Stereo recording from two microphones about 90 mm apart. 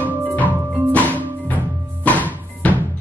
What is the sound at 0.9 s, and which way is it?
Music, 15° left (ahead or behind).